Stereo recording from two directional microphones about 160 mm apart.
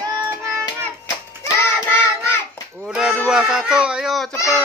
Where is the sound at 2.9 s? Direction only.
5° right (ahead or behind).